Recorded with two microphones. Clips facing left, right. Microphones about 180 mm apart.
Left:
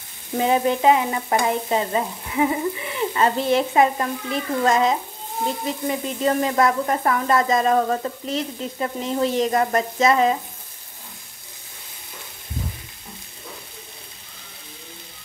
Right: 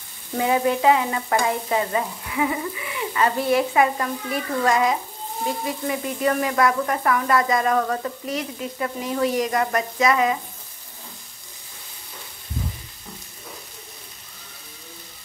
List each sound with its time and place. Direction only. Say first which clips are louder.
0.4 s frying: left 1 dB; 20° left (ahead or behind)